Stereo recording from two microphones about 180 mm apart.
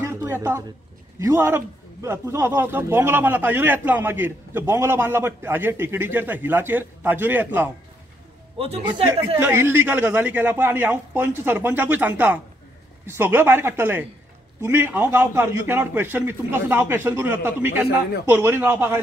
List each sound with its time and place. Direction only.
0.0 s a sound: 15° right (ahead or behind)
1.2 s a man's voice: 15° right (ahead or behind)
8.5 s a man's voice: 35° right (ahead or behind)
9.4 s a man's voice: 10° right (ahead or behind)